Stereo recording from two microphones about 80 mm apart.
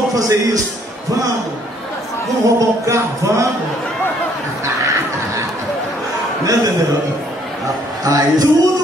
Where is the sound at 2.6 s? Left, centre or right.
Right.